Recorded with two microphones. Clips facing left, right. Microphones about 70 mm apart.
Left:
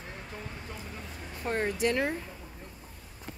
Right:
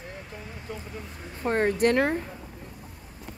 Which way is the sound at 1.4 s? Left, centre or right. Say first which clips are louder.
Right 6 dB; right.